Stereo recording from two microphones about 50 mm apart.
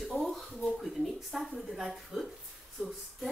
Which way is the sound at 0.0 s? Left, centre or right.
Centre.